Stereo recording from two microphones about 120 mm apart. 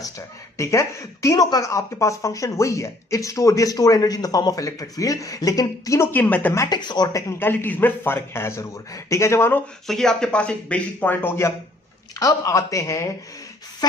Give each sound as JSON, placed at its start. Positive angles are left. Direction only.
{"t": 0.6, "sound": "speech", "side_deg": 25}
{"t": 6.1, "sound": "speech", "side_deg": 15}
{"t": 6.7, "sound": "speech", "side_deg": 35}
{"t": 9.8, "sound": "speech", "side_deg": 5}